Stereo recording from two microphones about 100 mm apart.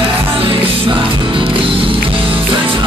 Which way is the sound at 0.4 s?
60° right (ahead or behind).